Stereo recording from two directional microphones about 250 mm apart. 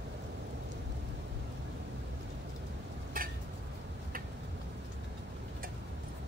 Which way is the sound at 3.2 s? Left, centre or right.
Right.